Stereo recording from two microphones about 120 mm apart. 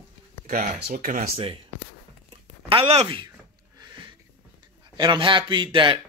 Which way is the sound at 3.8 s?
40° right (ahead or behind).